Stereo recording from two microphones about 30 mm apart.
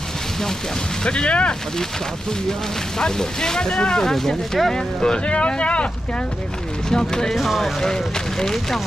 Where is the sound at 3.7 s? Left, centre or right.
Left.